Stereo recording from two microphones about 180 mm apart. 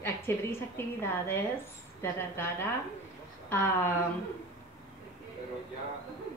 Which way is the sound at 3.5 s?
15° left (ahead or behind).